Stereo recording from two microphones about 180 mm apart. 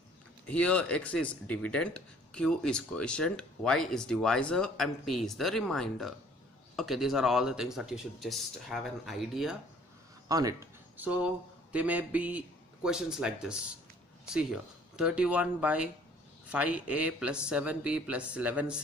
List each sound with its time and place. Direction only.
0.5 s speech: 5° left (ahead or behind)
10.2 s speech: 20° right (ahead or behind)
11.0 s a man's voice: 5° right (ahead or behind)